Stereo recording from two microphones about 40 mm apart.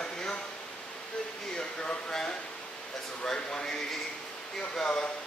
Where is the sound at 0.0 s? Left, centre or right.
Left.